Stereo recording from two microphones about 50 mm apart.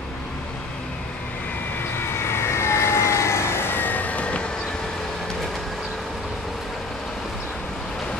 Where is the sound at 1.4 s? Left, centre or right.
Left.